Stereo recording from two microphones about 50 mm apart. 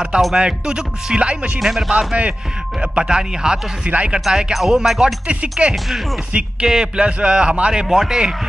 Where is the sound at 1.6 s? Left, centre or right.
Centre.